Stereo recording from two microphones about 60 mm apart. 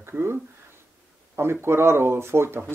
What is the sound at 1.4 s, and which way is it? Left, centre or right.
Speech, right.